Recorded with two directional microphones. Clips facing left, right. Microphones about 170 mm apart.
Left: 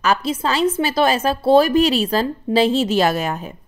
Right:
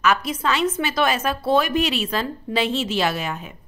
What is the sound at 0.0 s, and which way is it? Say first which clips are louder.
Speech: left 2 dB; 30° left (ahead or behind).